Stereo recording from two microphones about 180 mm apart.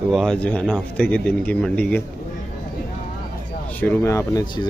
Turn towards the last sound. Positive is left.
turn(degrees=25)  # may be behind; listen again after turning